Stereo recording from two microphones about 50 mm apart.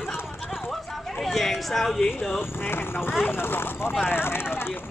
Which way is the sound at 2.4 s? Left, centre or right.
Left.